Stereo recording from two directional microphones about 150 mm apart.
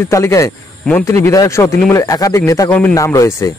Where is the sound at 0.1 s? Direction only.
20° left (ahead or behind).